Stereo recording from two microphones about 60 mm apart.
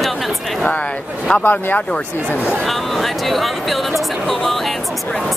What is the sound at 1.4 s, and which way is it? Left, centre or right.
Speech, left.